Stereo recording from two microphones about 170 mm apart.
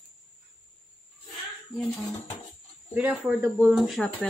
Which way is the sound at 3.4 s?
15° right (ahead or behind).